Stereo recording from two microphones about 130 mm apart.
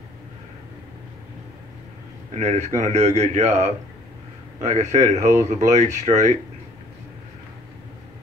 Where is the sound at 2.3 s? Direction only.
65° right (ahead or behind).